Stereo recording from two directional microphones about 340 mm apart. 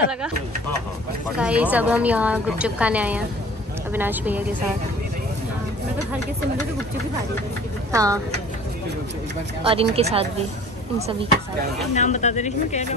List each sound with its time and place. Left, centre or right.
1.4 s a woman's voice: centre
7.9 s speech: centre
9.6 s speech: centre
11.9 s speech: left